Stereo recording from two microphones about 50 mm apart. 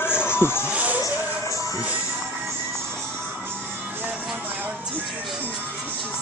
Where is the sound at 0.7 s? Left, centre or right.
Right.